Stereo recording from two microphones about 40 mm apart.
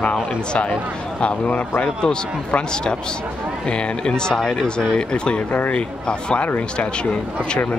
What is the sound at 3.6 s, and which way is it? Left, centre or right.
Speech, left.